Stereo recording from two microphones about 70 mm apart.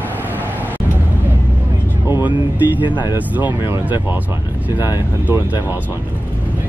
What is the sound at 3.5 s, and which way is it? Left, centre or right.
Speech, right.